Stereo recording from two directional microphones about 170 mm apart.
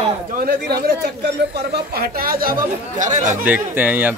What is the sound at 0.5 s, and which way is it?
Speech, 70° right (ahead or behind).